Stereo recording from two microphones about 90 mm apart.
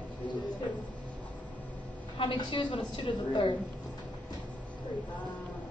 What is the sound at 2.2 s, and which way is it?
A woman's voice, 65° left (ahead or behind).